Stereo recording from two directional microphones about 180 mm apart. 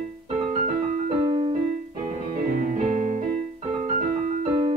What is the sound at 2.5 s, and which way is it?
Music, 45° right (ahead or behind).